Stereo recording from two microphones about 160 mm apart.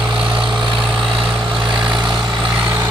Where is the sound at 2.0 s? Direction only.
5° right (ahead or behind).